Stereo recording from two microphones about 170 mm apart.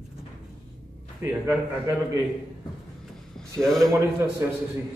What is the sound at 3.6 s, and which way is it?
Speech, centre (ahead or behind).